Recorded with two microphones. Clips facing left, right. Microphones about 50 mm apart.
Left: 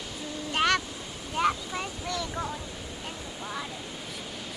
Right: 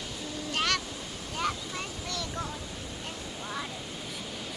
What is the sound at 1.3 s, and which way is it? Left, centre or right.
Boat, centre.